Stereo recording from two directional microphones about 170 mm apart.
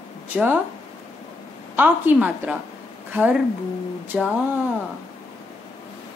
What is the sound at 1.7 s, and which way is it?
A woman's voice, 10° right (ahead or behind).